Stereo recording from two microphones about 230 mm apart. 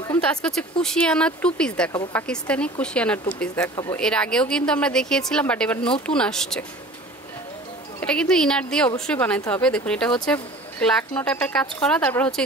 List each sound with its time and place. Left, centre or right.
0.0 s speech: centre
1.9 s a woman's voice: centre
2.2 s speech: centre
8.0 s speech: centre